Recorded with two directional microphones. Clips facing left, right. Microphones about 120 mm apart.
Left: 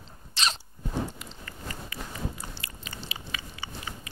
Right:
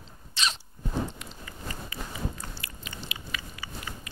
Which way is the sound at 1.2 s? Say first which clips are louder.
Even; 5° left (ahead or behind).